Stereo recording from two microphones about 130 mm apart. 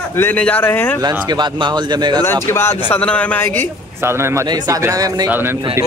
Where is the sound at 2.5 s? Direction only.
20° left (ahead or behind).